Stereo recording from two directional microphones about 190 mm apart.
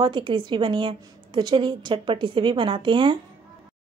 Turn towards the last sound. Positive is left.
turn(degrees=-25)  # may be behind; listen again after turning